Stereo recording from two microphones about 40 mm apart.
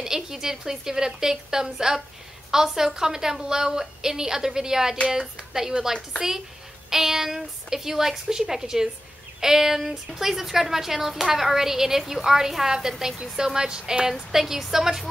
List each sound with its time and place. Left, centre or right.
0.0 s a woman's voice: centre